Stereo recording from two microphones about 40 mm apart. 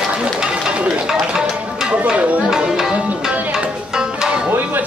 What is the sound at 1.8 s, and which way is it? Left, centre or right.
Music, right.